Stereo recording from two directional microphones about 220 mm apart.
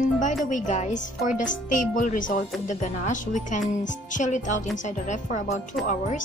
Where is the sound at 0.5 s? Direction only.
35° left (ahead or behind).